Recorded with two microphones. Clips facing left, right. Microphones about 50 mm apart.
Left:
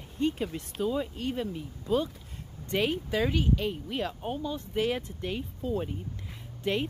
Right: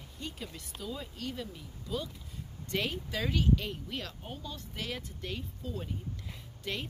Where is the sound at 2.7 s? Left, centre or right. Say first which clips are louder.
Left 6 dB; left.